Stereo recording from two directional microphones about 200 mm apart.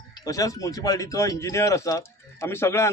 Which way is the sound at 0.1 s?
15° left (ahead or behind).